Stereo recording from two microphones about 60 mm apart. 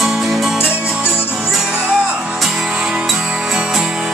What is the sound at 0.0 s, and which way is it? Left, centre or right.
Music, centre.